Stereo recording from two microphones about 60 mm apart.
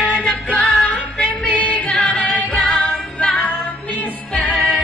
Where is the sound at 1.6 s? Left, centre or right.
Left.